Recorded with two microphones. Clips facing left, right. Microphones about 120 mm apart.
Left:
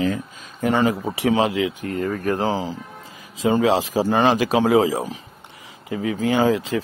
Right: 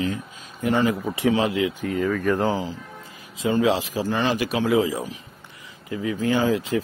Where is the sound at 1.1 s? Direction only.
85° left.